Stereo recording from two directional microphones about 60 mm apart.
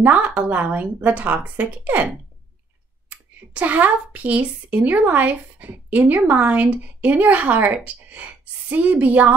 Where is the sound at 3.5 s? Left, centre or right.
Right.